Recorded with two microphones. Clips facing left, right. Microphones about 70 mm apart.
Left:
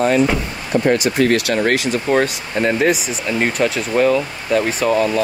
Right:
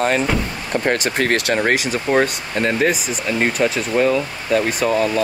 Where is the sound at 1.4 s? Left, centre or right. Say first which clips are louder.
Left 1 dB; centre.